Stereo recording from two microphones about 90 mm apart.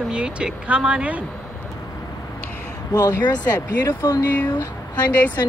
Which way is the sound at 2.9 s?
50° left (ahead or behind).